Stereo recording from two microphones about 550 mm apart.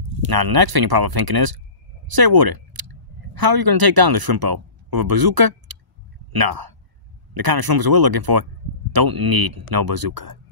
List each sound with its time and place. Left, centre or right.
0.3 s speech: right
2.0 s a sound: right
3.3 s speech: right